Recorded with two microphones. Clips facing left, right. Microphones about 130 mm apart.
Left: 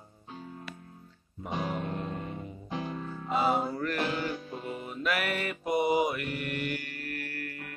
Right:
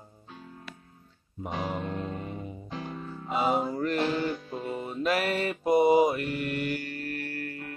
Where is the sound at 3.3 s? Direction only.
15° right (ahead or behind).